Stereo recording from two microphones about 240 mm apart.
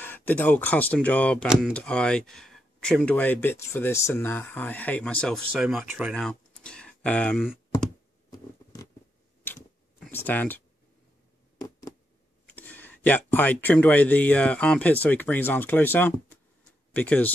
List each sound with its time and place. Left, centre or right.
0.0 s speech: centre
9.4 s tick-tock: centre
12.5 s speech: centre